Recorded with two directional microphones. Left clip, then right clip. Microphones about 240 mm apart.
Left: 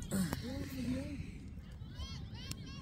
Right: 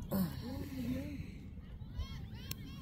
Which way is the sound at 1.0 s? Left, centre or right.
Right.